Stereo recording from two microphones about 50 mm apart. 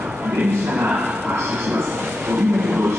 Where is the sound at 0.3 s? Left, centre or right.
Right.